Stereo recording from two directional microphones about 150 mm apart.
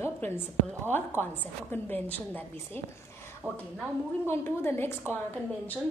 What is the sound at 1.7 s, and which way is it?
Speech, 10° left (ahead or behind).